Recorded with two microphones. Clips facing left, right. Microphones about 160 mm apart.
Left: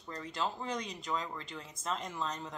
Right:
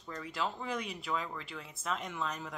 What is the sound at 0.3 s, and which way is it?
Speech, centre (ahead or behind).